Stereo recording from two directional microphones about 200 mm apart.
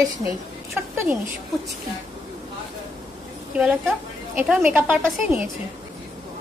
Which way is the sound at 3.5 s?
5° right (ahead or behind).